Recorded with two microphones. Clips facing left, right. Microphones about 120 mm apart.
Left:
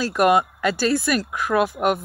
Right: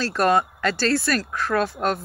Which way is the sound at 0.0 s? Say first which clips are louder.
Left 2 dB; 15° left (ahead or behind).